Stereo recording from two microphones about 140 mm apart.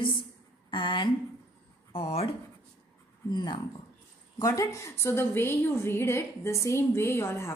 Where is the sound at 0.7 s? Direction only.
35° left (ahead or behind).